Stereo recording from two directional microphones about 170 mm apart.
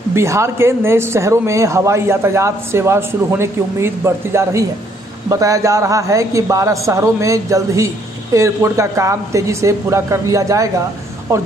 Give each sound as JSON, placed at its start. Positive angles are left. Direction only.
{"t": 0.1, "sound": "a woman's voice", "side_deg": -15}